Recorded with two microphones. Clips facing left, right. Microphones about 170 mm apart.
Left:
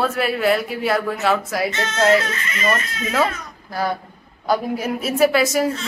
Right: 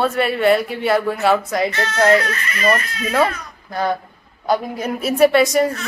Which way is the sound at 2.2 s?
25° left (ahead or behind).